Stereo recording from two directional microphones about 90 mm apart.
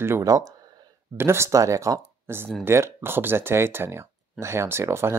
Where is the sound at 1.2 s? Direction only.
30° right (ahead or behind).